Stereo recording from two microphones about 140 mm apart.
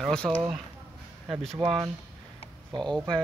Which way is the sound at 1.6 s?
40° right (ahead or behind).